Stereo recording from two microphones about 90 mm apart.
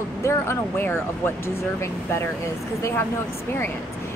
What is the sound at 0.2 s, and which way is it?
Speech, 30° left (ahead or behind).